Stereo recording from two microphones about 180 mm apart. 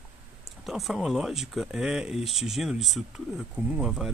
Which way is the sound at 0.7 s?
Centre (ahead or behind).